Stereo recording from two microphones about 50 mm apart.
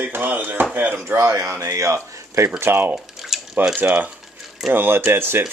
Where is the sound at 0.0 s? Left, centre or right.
Right.